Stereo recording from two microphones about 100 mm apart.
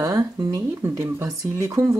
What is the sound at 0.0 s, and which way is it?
Speech, 35° right (ahead or behind).